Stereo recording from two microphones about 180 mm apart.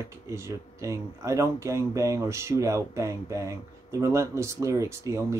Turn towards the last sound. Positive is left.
turn(degrees=-15)  # may be behind; listen again after turning